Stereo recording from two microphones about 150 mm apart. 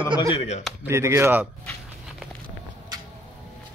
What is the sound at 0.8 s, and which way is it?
Speech, 15° right (ahead or behind).